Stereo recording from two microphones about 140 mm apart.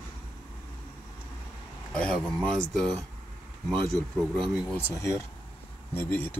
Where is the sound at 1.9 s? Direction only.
5° left (ahead or behind).